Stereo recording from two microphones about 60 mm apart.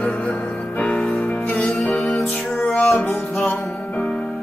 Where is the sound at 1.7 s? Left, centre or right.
Centre.